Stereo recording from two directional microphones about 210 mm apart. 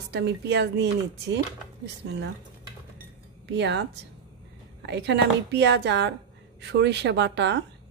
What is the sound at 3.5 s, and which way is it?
Speech, 55° right (ahead or behind).